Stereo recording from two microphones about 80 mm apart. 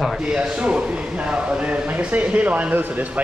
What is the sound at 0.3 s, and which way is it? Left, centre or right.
Speech, centre.